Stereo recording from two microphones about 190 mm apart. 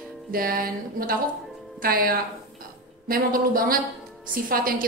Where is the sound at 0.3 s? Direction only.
50° right (ahead or behind).